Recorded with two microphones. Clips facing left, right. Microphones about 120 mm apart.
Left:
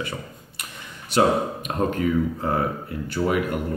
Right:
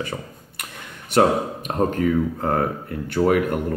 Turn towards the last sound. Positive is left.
turn(degrees=-55)  # may be behind; listen again after turning